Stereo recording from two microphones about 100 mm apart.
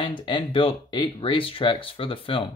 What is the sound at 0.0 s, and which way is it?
Speech, 50° left (ahead or behind).